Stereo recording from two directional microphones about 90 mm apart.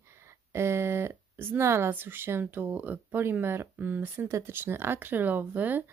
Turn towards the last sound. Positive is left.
turn(degrees=-20)  # may be behind; listen again after turning